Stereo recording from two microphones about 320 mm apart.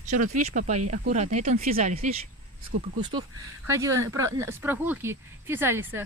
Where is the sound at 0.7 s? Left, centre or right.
Right.